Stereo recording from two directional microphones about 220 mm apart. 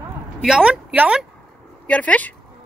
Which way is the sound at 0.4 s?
5° right (ahead or behind).